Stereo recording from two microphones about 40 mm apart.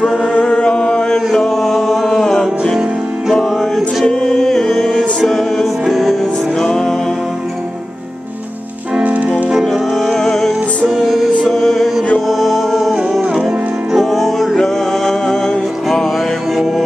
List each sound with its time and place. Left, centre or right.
0.0 s singing: left
0.3 s singing: left
1.1 s music: centre
4.0 s music: centre
6.6 s music: centre
9.0 s music: right
10.1 s music: centre
10.9 s music: centre
11.4 s music: centre
13.2 s music: right
13.9 s music: centre